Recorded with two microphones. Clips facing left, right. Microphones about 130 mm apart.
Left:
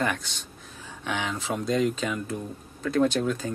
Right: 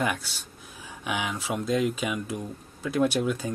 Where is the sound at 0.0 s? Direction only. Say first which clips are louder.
Even; 10° right (ahead or behind).